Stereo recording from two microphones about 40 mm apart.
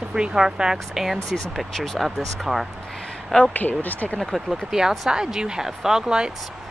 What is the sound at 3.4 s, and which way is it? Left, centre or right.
Speech, left.